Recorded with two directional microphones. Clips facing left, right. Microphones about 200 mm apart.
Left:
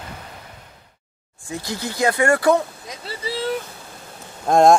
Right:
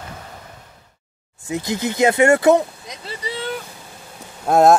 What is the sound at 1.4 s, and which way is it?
Speech, 20° right (ahead or behind).